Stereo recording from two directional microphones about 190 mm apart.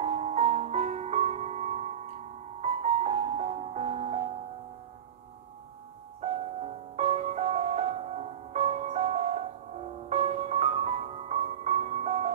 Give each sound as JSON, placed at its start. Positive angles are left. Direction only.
{"t": 0.0, "sound": "music", "side_deg": -35}
{"t": 6.2, "sound": "music", "side_deg": -35}